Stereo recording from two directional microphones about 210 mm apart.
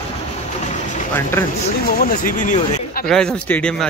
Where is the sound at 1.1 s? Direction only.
10° left (ahead or behind).